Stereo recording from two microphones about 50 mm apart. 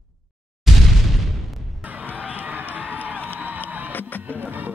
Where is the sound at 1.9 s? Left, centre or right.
Right.